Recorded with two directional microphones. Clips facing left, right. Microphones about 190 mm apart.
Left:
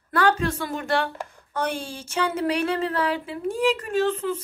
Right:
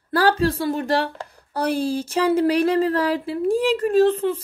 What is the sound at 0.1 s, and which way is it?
A woman's voice, 35° right (ahead or behind).